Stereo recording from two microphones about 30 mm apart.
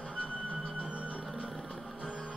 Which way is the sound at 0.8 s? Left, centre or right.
Right.